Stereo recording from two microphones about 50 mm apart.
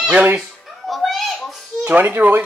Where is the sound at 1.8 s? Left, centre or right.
Right.